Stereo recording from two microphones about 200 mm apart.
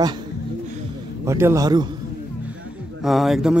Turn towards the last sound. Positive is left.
turn(degrees=0)  # may be behind; listen again after turning